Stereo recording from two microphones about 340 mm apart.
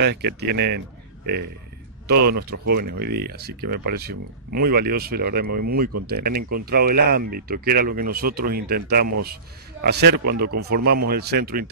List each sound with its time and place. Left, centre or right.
0.0 s speech: right